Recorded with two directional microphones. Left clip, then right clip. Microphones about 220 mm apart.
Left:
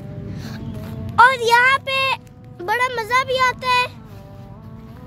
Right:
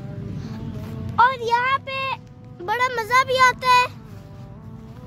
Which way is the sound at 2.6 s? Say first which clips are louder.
Left 2 dB; 15° left (ahead or behind).